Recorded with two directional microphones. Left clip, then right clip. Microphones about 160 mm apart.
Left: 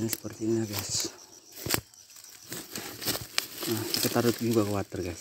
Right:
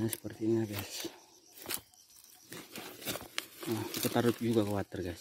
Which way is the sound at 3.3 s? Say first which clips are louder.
Left 5 dB; 45° left (ahead or behind).